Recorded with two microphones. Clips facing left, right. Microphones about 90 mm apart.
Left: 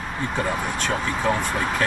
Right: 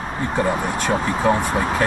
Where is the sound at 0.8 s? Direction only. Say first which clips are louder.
Right 4 dB; 15° right (ahead or behind).